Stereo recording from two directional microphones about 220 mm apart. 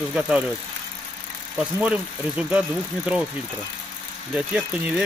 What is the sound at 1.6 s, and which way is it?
Speech, 5° right (ahead or behind).